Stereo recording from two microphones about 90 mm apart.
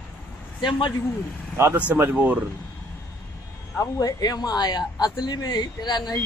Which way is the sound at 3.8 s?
40° left (ahead or behind).